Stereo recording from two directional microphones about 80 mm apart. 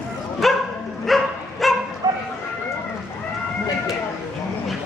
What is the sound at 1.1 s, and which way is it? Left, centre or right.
Dog, centre.